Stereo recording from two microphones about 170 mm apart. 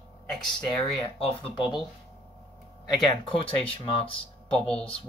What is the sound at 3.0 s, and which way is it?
Speech, 30° left (ahead or behind).